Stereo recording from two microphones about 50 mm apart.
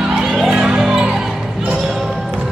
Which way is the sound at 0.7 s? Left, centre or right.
Centre.